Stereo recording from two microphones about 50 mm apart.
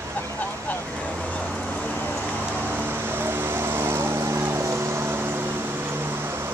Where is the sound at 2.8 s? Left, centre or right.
Right.